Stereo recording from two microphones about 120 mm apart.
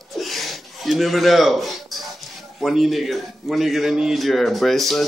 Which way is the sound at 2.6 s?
Centre (ahead or behind).